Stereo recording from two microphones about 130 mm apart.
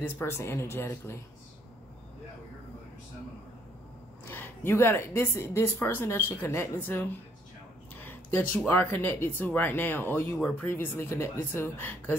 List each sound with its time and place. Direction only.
0.0 s speech: 20° left (ahead or behind)
4.3 s speech: 15° left (ahead or behind)